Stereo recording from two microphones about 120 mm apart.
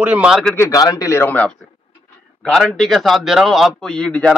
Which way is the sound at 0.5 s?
25° left (ahead or behind).